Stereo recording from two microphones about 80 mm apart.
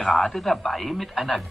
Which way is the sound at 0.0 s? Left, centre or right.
Centre.